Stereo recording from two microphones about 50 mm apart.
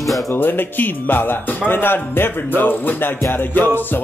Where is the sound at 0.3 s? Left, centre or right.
Left.